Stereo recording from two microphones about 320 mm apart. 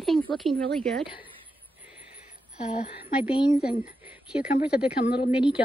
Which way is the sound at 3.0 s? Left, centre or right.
Centre.